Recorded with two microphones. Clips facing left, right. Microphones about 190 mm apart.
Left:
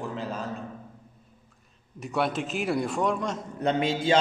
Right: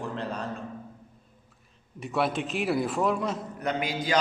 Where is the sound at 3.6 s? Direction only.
25° left (ahead or behind).